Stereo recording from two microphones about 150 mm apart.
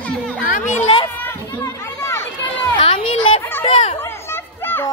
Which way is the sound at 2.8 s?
35° left (ahead or behind).